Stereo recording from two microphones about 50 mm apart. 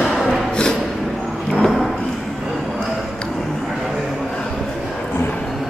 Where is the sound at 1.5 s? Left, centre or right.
Centre.